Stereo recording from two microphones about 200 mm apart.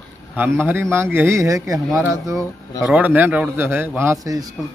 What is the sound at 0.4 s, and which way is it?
A man's voice, 10° right (ahead or behind).